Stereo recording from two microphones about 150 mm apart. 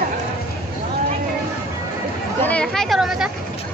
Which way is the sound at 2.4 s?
5° left (ahead or behind).